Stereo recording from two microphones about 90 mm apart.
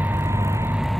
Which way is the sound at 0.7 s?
Centre (ahead or behind).